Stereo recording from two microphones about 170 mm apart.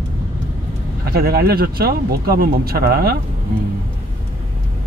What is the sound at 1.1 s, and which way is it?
Speech, 65° right (ahead or behind).